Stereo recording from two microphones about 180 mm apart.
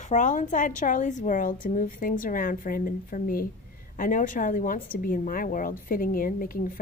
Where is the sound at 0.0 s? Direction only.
45° left (ahead or behind).